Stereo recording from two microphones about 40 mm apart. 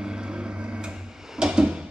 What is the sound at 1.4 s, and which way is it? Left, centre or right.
Drawer open or close, centre.